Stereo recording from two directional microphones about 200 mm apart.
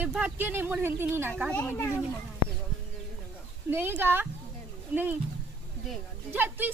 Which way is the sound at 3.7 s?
10° right (ahead or behind).